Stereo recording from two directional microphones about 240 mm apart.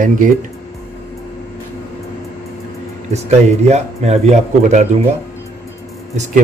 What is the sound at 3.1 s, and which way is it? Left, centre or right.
Speech, right.